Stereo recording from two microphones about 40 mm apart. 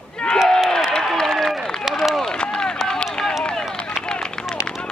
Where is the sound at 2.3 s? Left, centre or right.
Left.